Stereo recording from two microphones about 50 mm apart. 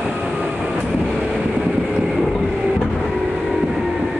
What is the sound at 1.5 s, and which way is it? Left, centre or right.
Train, centre.